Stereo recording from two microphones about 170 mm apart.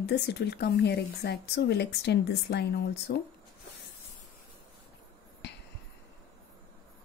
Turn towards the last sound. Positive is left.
turn(degrees=90)